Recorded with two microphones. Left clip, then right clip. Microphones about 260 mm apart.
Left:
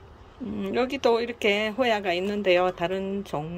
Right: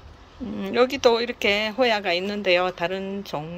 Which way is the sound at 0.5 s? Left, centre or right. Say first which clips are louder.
Right 5 dB; centre.